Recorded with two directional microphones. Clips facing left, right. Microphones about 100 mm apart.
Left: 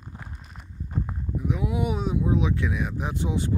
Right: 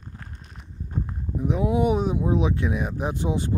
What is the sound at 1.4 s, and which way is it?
Speech, 30° right (ahead or behind).